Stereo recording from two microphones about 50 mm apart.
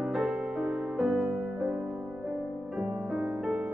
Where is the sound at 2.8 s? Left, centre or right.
Centre.